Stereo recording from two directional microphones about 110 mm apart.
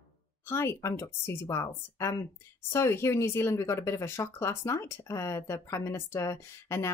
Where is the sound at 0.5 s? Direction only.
25° left (ahead or behind).